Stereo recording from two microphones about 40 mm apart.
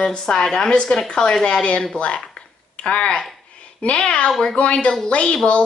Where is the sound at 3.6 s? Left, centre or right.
Left.